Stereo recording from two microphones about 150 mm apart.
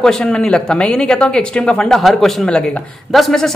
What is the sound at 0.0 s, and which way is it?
Speech, 5° left (ahead or behind).